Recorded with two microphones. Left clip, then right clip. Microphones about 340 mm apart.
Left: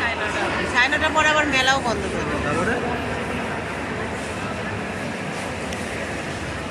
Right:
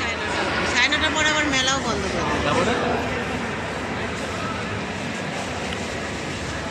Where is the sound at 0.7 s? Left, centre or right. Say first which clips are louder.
Left 2 dB; left.